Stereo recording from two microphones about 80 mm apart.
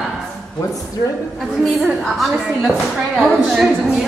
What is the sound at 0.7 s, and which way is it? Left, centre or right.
Speech, left.